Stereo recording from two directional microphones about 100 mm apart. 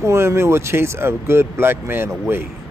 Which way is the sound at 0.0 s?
25° right (ahead or behind).